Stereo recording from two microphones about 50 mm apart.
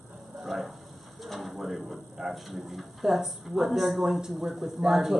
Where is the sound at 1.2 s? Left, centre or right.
Centre.